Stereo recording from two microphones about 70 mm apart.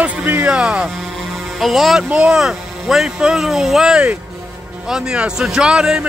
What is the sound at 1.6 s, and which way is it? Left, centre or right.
Music, centre.